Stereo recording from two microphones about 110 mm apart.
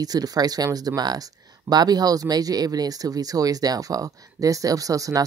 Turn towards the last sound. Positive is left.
turn(degrees=-30)  # may be behind; listen again after turning